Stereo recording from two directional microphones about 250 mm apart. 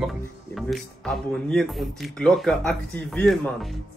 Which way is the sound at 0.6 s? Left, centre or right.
Centre.